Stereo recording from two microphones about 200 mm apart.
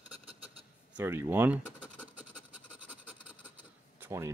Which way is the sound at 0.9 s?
10° right (ahead or behind).